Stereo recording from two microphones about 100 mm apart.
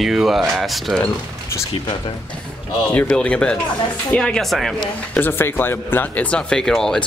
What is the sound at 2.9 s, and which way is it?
Speech, 10° left (ahead or behind).